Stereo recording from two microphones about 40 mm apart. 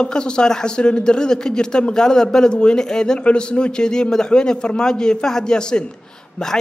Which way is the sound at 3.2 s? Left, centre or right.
Left.